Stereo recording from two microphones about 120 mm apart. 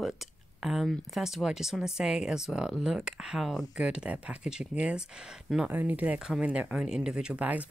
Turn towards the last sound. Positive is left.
turn(degrees=-10)  # may be behind; listen again after turning